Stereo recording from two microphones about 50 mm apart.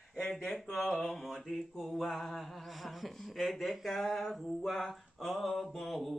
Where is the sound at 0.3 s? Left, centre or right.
Centre.